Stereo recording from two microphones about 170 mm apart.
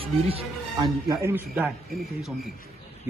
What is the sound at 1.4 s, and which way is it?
Speech, 5° right (ahead or behind).